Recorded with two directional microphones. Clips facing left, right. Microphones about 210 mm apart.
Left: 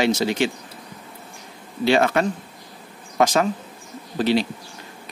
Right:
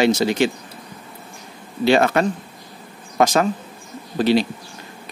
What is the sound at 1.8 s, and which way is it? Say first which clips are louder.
A man's voice: right 2 dB; 45° right (ahead or behind).